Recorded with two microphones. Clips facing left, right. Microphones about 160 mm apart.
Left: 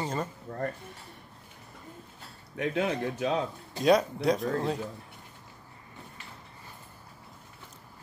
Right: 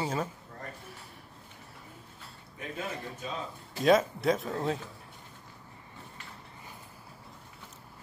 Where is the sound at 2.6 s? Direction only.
80° left.